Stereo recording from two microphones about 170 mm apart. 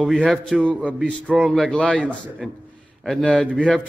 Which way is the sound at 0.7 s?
5° right (ahead or behind).